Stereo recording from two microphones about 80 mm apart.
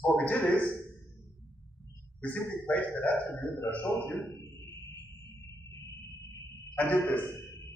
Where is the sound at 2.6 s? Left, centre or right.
Left.